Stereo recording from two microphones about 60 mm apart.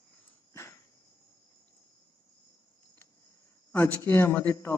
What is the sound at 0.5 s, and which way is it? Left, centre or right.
Cricket, left.